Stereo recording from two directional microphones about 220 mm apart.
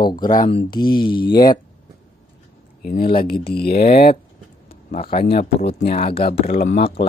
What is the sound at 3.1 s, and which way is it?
Speech, 45° left (ahead or behind).